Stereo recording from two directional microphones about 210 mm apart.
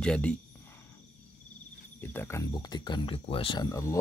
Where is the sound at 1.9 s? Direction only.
10° left (ahead or behind).